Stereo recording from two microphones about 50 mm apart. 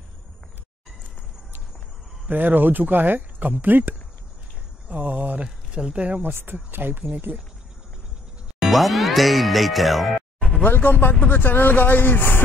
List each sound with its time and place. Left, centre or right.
2.2 s speech: right
4.8 s a sound: right
5.8 s speech: centre
6.2 s speech: right
8.5 s speech: centre
10.6 s speech: left